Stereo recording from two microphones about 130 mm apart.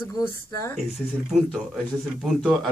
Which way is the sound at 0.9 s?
Centre (ahead or behind).